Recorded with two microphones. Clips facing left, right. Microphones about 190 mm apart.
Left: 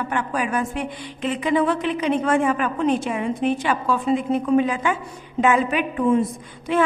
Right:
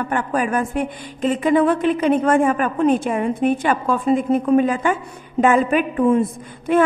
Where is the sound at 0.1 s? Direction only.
50° right (ahead or behind).